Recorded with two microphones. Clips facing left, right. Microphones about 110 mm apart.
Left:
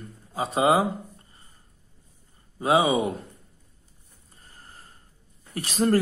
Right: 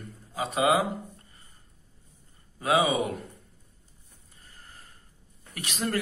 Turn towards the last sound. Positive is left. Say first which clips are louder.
# left 8 dB
turn(degrees=40)  # may be behind; listen again after turning